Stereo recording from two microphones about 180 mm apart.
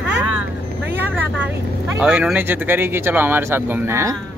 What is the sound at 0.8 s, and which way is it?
Vehicle, 10° right (ahead or behind).